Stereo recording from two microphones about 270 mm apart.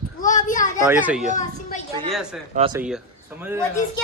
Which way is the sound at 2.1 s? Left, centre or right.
Centre.